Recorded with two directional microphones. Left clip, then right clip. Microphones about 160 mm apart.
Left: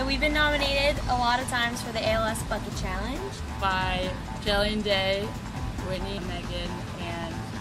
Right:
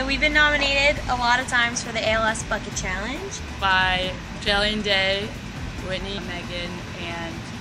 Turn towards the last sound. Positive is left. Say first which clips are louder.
# right 4 dB
turn(degrees=5)  # may be behind; listen again after turning